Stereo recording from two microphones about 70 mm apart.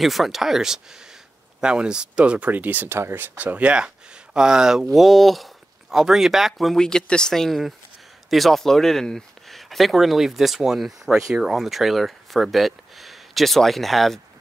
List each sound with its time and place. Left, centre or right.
0.0 s speech: centre